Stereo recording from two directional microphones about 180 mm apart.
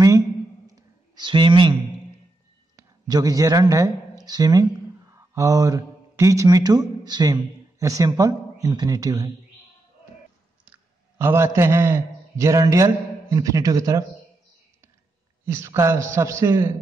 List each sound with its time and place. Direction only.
0.7 s a sound: 20° right (ahead or behind)
2.7 s speech: 20° right (ahead or behind)
10.6 s a man's voice: 10° right (ahead or behind)
15.4 s a man's voice: 15° right (ahead or behind)